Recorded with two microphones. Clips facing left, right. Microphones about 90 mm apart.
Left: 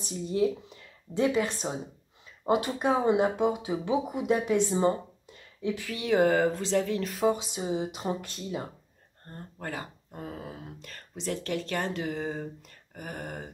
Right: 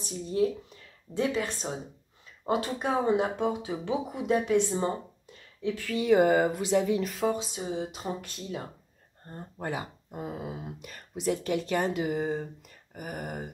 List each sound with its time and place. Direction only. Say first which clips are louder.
1.2 s speech: left 3 dB; 15° left (ahead or behind)
5.9 s speech: right 2 dB; centre (ahead or behind)
7.1 s speech: left 2 dB; 5° left (ahead or behind)
9.2 s speech: right 3 dB; 15° right (ahead or behind)